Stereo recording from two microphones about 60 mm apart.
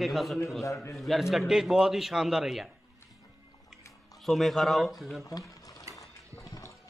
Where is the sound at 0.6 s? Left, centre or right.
Left.